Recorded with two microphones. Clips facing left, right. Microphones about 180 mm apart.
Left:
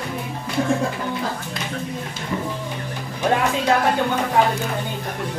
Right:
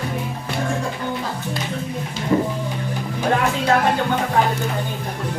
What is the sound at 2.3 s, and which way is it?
Music, 35° right (ahead or behind).